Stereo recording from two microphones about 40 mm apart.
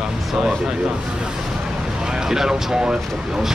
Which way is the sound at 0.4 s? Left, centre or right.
Centre.